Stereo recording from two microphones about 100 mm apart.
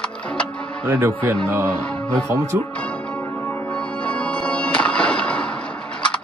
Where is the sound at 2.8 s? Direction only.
10° left (ahead or behind).